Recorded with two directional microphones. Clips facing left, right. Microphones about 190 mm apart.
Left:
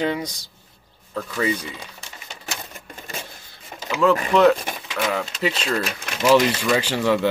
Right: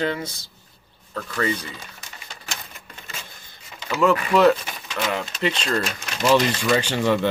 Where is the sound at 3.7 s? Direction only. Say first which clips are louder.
Left 4 dB; 45° left (ahead or behind).